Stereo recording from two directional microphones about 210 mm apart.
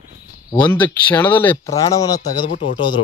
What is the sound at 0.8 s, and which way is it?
Speech, 10° left (ahead or behind).